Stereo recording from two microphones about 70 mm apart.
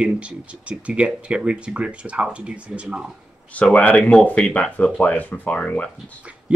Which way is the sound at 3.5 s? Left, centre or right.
Centre.